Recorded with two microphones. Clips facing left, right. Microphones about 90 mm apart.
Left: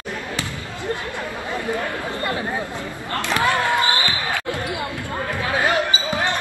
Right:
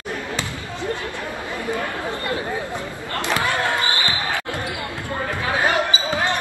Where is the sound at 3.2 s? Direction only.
20° right (ahead or behind).